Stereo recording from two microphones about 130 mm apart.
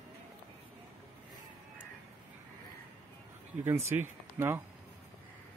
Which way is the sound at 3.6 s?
20° right (ahead or behind).